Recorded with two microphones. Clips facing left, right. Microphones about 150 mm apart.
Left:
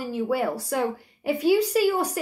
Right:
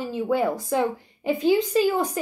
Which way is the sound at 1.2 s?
5° left (ahead or behind).